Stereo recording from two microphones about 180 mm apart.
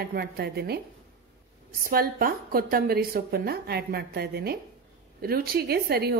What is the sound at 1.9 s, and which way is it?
A woman's voice, 55° right (ahead or behind).